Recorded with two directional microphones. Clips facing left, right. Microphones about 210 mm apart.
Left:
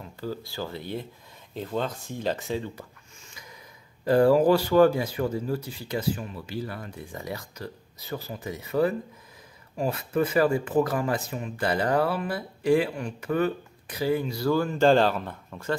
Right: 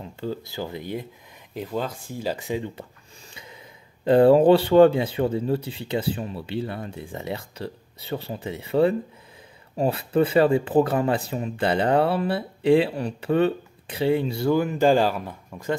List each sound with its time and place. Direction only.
0.2 s speech: 20° right (ahead or behind)
3.3 s speech: 30° right (ahead or behind); by 15.7 s 10° right (ahead or behind)